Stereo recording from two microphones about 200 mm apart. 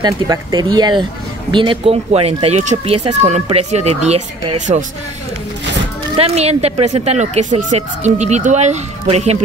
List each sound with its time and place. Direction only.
0.0 s speech: 20° right (ahead or behind); by 4.8 s 35° right (ahead or behind)
6.1 s speech: 30° right (ahead or behind)